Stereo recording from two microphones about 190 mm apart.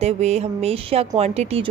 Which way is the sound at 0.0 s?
35° right (ahead or behind).